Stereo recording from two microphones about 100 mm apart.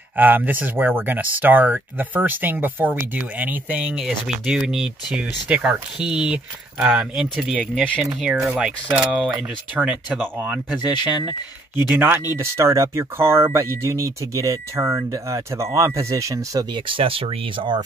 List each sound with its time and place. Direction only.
0.1 s speech: 15° right (ahead or behind)
4.5 s speech: 5° right (ahead or behind)
7.2 s speech: 5° right (ahead or behind)
7.6 s speech: 10° left (ahead or behind)
8.0 s speech: 5° right (ahead or behind)
10.2 s speech: 20° right (ahead or behind)
12.4 s speech: 30° right (ahead or behind)
16.7 s speech: 60° right (ahead or behind)